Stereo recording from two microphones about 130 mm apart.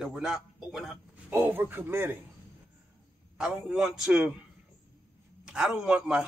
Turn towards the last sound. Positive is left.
turn(degrees=-10)  # may be behind; listen again after turning